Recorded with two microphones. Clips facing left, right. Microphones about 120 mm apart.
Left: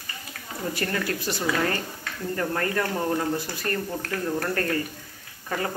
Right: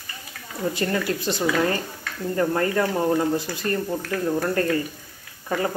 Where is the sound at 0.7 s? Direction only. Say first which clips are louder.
Right 3 dB; 25° right (ahead or behind).